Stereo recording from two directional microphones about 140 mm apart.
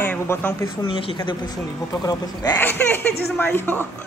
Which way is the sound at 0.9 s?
40° left (ahead or behind).